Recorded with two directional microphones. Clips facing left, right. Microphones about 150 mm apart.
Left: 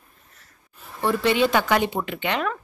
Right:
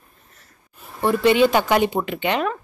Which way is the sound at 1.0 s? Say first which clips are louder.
Right 4 dB; 15° right (ahead or behind).